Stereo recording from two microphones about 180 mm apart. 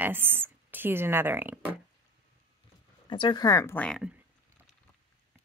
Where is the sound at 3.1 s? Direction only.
25° left (ahead or behind); by 4.1 s 5° left (ahead or behind).